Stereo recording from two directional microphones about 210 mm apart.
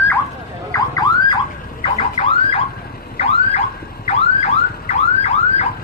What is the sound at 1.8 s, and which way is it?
Car alarm, 30° left (ahead or behind).